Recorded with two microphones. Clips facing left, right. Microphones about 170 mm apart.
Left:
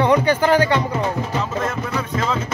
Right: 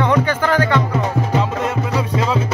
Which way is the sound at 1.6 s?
15° right (ahead or behind).